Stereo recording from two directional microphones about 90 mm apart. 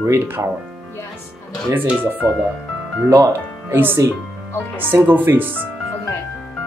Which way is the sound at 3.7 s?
25° right (ahead or behind).